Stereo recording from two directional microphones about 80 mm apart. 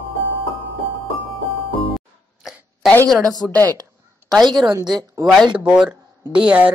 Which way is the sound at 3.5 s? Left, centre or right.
Left.